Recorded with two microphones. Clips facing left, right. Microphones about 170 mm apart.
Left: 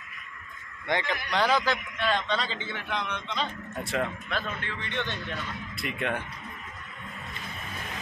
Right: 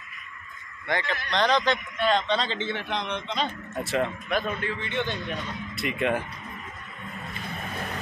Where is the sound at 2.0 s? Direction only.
25° right (ahead or behind).